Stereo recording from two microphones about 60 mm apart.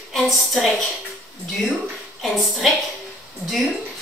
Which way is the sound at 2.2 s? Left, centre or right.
Centre.